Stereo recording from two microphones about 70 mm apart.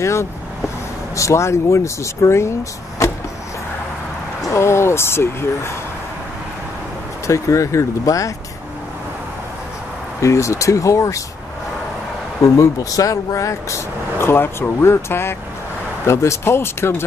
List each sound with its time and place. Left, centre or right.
0.0 s speech: left
4.5 s speech: left
7.2 s speech: left
10.2 s speech: left
12.4 s speech: left